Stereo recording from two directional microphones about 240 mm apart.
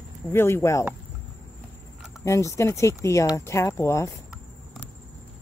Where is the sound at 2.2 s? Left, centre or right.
Centre.